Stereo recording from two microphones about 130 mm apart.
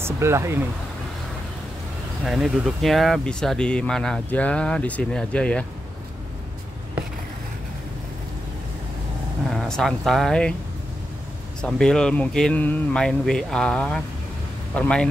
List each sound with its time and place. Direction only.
0.0 s speech: 20° right (ahead or behind)
2.2 s speech: centre (ahead or behind)
9.5 s speech: 5° left (ahead or behind)
11.6 s speech: 5° left (ahead or behind)